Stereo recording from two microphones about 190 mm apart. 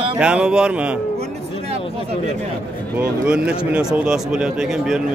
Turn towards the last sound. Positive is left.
turn(degrees=-5)  # may be behind; listen again after turning